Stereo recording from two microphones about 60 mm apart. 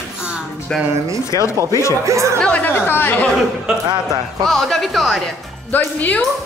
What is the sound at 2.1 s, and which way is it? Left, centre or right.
Speech, right.